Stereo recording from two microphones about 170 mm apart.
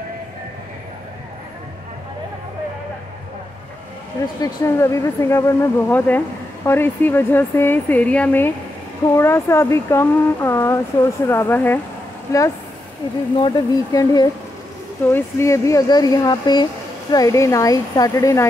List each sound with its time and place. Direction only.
4.4 s a woman's voice: 15° left (ahead or behind)